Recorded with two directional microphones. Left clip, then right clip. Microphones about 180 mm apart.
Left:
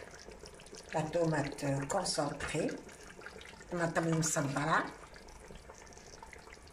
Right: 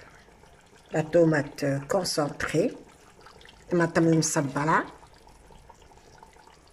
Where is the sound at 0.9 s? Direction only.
50° right (ahead or behind).